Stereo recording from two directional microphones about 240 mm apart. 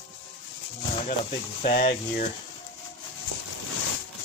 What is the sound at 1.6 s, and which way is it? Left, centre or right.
Speech, left.